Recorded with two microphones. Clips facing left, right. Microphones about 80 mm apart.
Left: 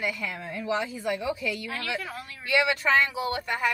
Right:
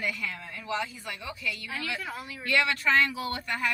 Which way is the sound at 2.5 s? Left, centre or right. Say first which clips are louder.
Left 2 dB; centre.